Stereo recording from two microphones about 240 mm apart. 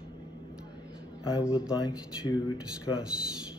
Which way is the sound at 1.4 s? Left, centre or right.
Centre.